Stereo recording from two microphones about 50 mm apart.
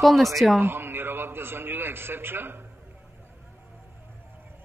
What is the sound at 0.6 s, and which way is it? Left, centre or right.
A man's voice, right.